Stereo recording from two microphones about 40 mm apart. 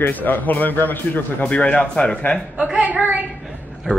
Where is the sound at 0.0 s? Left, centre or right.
Left.